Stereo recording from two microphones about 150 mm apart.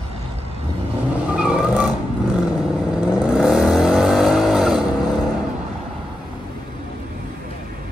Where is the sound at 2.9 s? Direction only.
5° right (ahead or behind).